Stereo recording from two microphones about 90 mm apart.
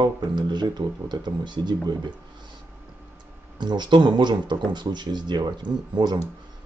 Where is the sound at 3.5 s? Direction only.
55° right (ahead or behind).